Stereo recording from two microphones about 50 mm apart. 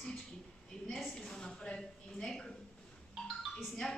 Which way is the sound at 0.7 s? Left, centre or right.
Centre.